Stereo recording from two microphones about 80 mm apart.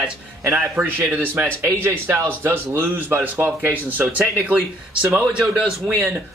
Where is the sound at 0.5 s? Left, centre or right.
Right.